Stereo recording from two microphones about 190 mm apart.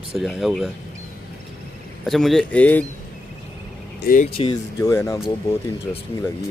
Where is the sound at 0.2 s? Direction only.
Centre (ahead or behind).